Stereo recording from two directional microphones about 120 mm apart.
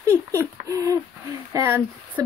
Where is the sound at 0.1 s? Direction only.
20° left (ahead or behind).